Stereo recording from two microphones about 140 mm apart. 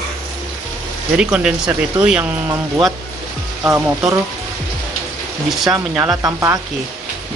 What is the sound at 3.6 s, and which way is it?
Speech, 20° right (ahead or behind).